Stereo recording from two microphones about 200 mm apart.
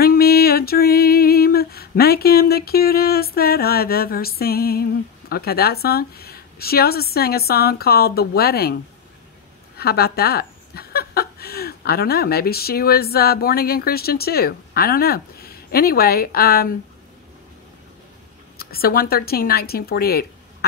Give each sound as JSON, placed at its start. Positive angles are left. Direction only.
{"t": 0.0, "sound": "a sound", "side_deg": 50}
{"t": 5.3, "sound": "a woman's voice", "side_deg": 50}
{"t": 18.6, "sound": "a woman's voice", "side_deg": 50}